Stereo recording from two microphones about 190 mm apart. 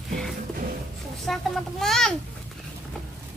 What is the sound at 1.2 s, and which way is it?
Speech, centre (ahead or behind).